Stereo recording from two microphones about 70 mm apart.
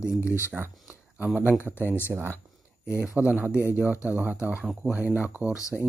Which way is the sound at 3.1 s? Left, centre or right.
Right.